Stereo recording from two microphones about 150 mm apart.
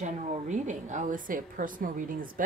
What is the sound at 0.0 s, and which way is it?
A woman's voice, 50° right (ahead or behind).